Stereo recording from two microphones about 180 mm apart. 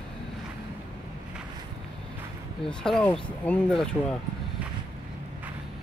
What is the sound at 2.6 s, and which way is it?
Speech, 5° left (ahead or behind).